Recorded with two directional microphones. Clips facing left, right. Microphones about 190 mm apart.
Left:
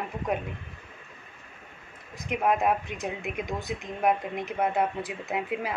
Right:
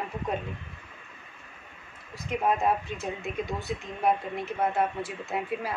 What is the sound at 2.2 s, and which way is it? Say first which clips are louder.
Speech: left 1 dB; 15° left (ahead or behind).